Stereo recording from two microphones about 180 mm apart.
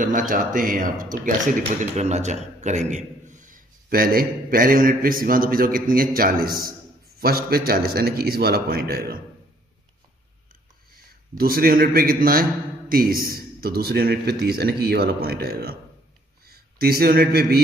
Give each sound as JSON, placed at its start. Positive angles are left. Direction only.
{"t": 0.3, "sound": "a man's voice", "side_deg": -50}
{"t": 11.3, "sound": "a man's voice", "side_deg": -55}